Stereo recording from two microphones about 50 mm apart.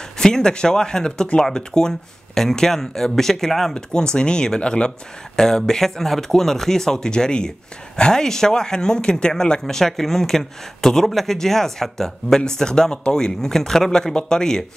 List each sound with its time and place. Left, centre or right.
0.2 s speech: centre
3.7 s speech: centre